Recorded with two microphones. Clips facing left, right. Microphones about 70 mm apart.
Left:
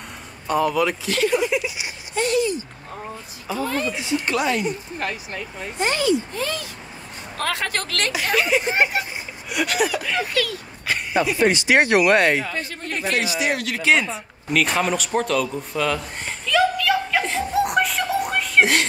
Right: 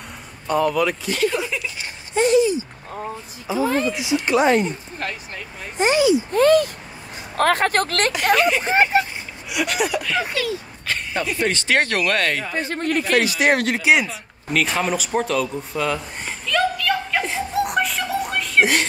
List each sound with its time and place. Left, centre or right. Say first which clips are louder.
0.5 s speech: right 1 dB; centre
1.3 s a sound: left 4 dB; centre
2.1 s a sound: right 5 dB; right
3.4 s speech: right 4 dB; centre
4.4 s speech: right 8 dB; right
4.6 s speech: left 2 dB; centre
5.8 s speech: right 4 dB; centre
6.3 s speech: right 13 dB; right
8.3 s speech: right 3 dB; centre
10.1 s speech: right 1 dB; right
10.9 s speech: left 3 dB; centre
12.7 s speech: right 6 dB; right
13.7 s a sound: right 1 dB; centre